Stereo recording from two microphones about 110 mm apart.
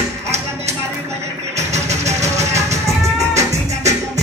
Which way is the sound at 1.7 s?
90° right.